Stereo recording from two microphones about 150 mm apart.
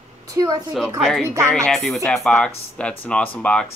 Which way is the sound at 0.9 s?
Centre (ahead or behind).